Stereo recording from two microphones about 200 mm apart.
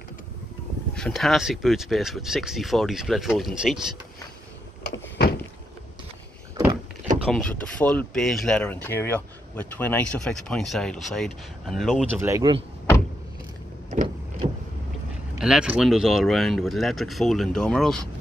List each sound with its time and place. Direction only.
0.9 s speech: 5° left (ahead or behind)
4.9 s power windows: 60° left (ahead or behind)
7.2 s speech: 5° left (ahead or behind)
12.2 s speech: 15° right (ahead or behind)
13.8 s vehicle: 35° right (ahead or behind)
15.3 s speech: 5° right (ahead or behind)